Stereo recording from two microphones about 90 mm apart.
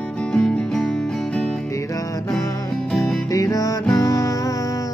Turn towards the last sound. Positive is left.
turn(degrees=40)  # may be behind; listen again after turning